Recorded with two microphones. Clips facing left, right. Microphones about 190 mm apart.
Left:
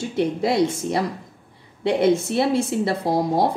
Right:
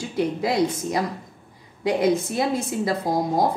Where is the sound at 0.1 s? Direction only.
25° left (ahead or behind).